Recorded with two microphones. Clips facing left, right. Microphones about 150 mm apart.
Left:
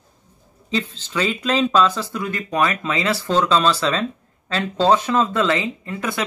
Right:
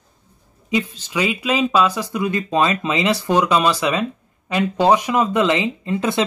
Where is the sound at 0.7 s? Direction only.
15° right (ahead or behind).